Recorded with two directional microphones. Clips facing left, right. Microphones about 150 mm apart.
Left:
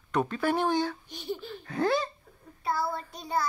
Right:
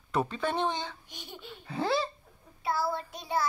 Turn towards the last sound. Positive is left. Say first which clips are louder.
# left 1 dB
turn(degrees=0)  # may be behind; listen again after turning